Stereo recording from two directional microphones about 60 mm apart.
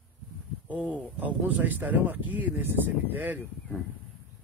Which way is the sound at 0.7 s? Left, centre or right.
Right.